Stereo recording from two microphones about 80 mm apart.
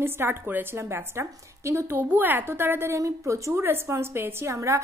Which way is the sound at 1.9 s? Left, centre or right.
Right.